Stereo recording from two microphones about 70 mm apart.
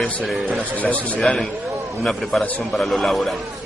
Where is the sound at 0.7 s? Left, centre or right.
Left.